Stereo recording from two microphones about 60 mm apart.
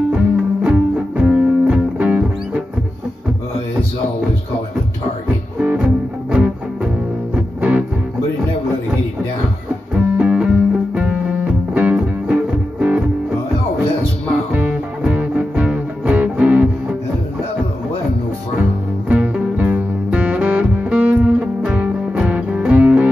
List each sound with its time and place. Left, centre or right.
0.1 s music: centre
5.6 s music: right
9.9 s music: centre
14.5 s music: right
19.0 s music: centre